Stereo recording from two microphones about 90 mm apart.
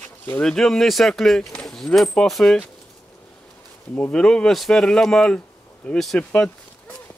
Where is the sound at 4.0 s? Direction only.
10° left (ahead or behind).